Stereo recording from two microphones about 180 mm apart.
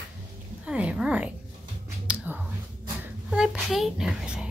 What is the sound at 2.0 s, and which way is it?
Whispering, 10° right (ahead or behind).